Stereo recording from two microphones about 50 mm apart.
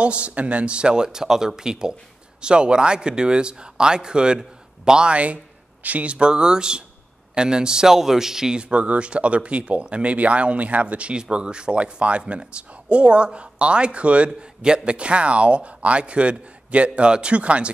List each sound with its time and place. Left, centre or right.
0.0 s speech: right